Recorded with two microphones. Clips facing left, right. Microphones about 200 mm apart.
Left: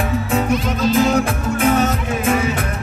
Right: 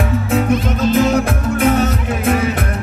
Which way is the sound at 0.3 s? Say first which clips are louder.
Right 3 dB; 55° right (ahead or behind).